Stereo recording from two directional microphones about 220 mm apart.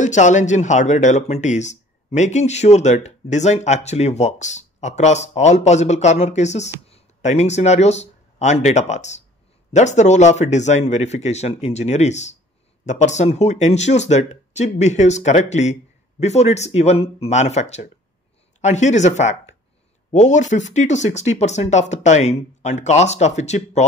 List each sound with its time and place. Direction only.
0.0 s speech: 35° left (ahead or behind)